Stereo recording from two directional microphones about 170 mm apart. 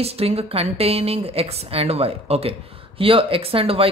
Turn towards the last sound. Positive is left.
turn(degrees=-35)  # may be behind; listen again after turning